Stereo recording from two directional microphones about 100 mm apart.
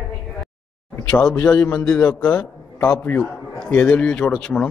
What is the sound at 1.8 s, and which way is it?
A man's voice, 5° left (ahead or behind).